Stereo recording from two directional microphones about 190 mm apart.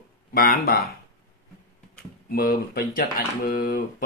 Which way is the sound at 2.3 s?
50° left (ahead or behind).